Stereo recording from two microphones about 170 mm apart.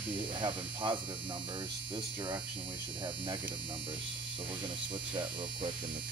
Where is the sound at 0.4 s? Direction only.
30° right (ahead or behind).